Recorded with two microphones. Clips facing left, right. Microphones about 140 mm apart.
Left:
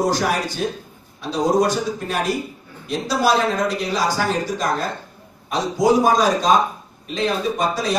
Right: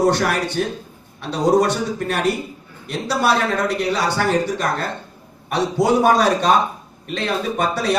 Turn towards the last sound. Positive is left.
turn(degrees=-65)  # may be behind; listen again after turning